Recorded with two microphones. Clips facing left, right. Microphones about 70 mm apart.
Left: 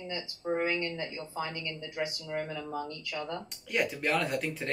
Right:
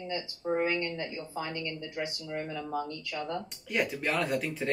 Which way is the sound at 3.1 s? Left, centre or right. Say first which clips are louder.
Right 2 dB; centre.